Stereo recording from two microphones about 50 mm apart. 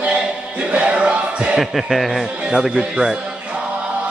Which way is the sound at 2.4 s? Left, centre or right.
Centre.